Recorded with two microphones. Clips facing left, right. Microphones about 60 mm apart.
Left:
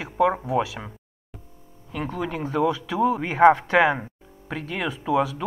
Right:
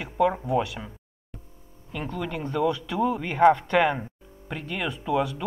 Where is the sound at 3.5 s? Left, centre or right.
Left.